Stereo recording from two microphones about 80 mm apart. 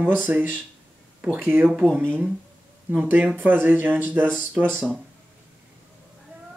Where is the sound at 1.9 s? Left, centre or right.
Right.